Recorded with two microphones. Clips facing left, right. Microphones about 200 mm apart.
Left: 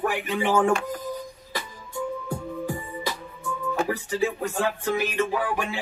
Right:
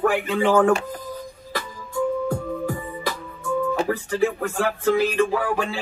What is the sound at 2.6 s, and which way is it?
Music, 20° left (ahead or behind).